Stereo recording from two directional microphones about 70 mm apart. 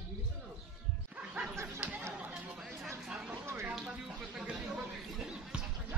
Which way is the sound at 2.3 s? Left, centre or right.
Centre.